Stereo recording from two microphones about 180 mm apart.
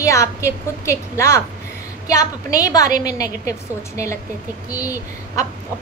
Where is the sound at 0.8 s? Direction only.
15° left (ahead or behind).